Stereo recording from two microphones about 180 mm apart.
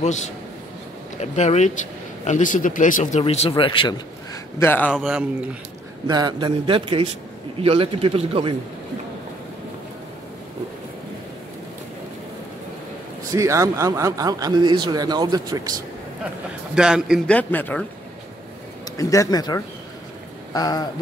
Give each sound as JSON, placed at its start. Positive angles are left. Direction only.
{"t": 1.2, "sound": "speech", "side_deg": 40}
{"t": 4.9, "sound": "speech", "side_deg": -5}
{"t": 6.0, "sound": "a man's voice", "side_deg": -25}
{"t": 13.3, "sound": "a man's voice", "side_deg": -15}
{"t": 16.7, "sound": "speech", "side_deg": -5}
{"t": 17.3, "sound": "speech", "side_deg": 10}
{"t": 18.9, "sound": "speech", "side_deg": 20}